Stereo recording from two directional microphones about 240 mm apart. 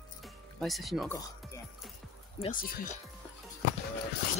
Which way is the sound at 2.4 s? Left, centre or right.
Left.